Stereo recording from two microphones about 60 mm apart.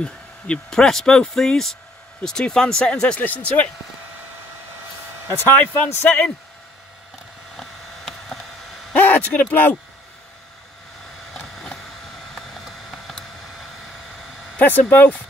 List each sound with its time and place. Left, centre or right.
0.0 s speech: centre
5.3 s speech: left
7.5 s a sound: centre
8.9 s speech: left
11.3 s vehicle: centre
14.6 s speech: left